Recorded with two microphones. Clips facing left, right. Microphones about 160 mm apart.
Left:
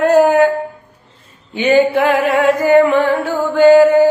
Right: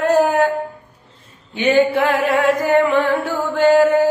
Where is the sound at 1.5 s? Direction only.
Centre (ahead or behind).